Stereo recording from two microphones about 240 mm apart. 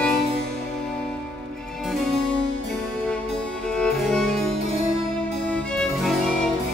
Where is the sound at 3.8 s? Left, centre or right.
Centre.